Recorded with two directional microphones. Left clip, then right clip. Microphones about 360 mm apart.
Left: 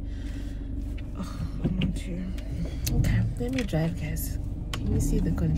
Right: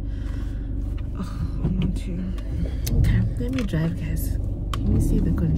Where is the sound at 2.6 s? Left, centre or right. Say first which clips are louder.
Right 2 dB; centre.